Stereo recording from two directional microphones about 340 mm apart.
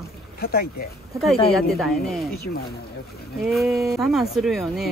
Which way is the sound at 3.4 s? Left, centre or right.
Centre.